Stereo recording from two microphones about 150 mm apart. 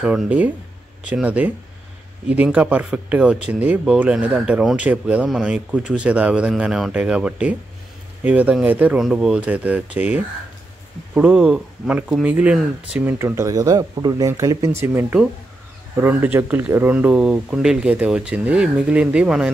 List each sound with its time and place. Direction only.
0.0 s speech: 10° right (ahead or behind)
13.2 s speech: 20° right (ahead or behind)